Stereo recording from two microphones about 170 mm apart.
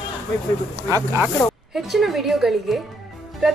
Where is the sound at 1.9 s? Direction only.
Centre (ahead or behind).